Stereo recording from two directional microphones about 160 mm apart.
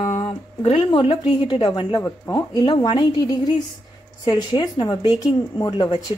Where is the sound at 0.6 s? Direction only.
35° left (ahead or behind).